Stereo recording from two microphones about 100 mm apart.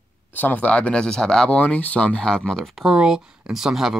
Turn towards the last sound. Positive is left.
turn(degrees=-5)  # may be behind; listen again after turning